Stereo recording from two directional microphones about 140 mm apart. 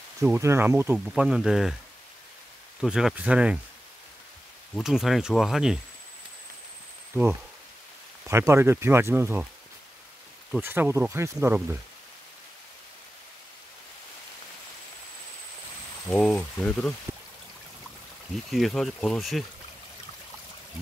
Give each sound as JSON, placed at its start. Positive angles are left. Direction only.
{"t": 0.2, "sound": "speech", "side_deg": -20}
{"t": 0.9, "sound": "speech", "side_deg": -5}
{"t": 2.8, "sound": "speech", "side_deg": -5}
{"t": 4.7, "sound": "speech", "side_deg": 0}
{"t": 8.3, "sound": "speech", "side_deg": -20}
{"t": 10.6, "sound": "speech", "side_deg": -15}
{"t": 16.1, "sound": "speech", "side_deg": 5}
{"t": 18.5, "sound": "speech", "side_deg": 0}